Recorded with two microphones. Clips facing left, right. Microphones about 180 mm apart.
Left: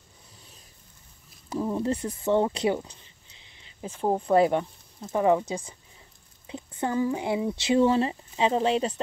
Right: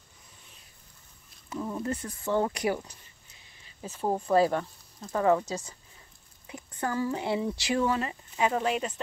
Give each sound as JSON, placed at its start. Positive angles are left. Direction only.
{"t": 1.7, "sound": "speech", "side_deg": 25}
{"t": 3.4, "sound": "a sound", "side_deg": 20}
{"t": 4.0, "sound": "speech", "side_deg": 20}
{"t": 6.4, "sound": "speech", "side_deg": 20}